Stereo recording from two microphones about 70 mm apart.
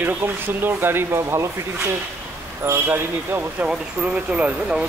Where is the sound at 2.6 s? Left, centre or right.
Right.